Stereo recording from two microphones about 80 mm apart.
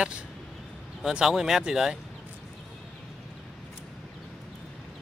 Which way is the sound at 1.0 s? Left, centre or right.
Centre.